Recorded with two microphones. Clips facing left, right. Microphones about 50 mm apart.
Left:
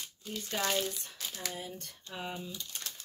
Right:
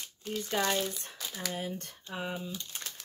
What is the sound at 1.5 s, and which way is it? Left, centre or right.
Speech, right.